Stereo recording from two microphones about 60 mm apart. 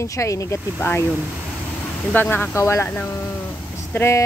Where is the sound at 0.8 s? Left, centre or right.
Left.